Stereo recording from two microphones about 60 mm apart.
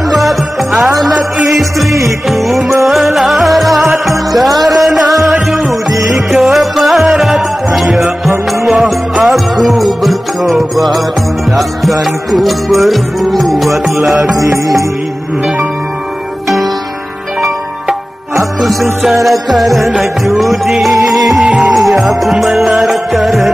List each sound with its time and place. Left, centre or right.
0.1 s music: centre
14.3 s music: right
17.4 s music: centre